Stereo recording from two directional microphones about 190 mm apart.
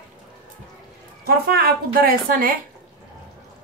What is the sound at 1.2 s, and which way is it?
Speech, 55° right (ahead or behind).